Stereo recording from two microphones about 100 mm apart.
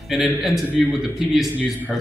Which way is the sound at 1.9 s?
Centre (ahead or behind).